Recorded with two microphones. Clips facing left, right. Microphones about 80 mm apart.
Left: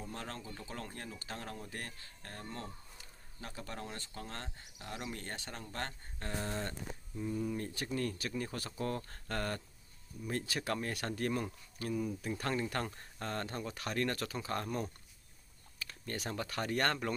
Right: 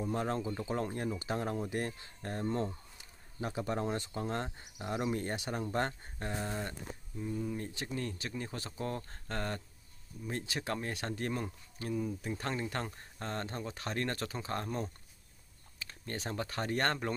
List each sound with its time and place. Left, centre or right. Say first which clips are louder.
0.0 s speech: right 10 dB; centre
7.5 s speech: left 1 dB; right